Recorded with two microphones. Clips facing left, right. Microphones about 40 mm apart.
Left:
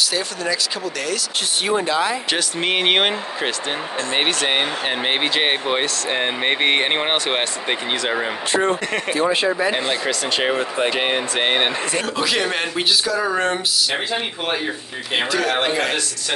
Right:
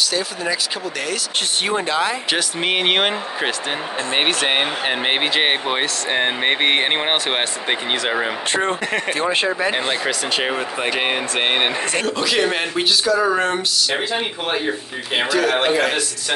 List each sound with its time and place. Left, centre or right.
1.7 s speech: right
2.3 s speech: centre
4.1 s speech: centre
9.2 s speech: right
9.7 s speech: right
10.3 s speech: centre
15.1 s speech: centre